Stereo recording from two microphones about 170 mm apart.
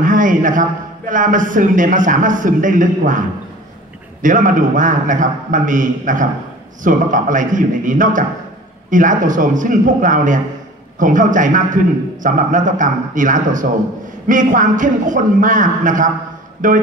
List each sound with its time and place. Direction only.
0.0 s a man's voice: 50° right (ahead or behind)